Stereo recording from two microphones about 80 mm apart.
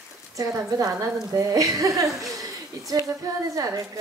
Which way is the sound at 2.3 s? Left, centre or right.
Right.